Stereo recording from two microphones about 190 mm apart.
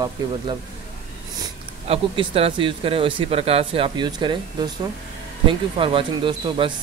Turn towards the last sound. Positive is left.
turn(degrees=-25)  # may be behind; listen again after turning